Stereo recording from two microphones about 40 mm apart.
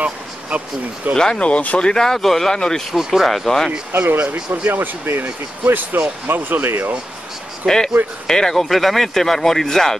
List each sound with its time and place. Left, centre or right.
1.1 s speech: centre
1.4 s speech: left
1.9 s speech: centre
2.9 s speech: centre
4.1 s speech: right
7.6 s speech: centre